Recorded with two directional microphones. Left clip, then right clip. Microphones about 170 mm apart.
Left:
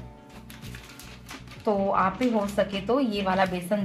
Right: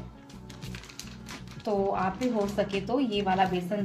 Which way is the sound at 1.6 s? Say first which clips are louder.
Left 4 dB; 15° left (ahead or behind).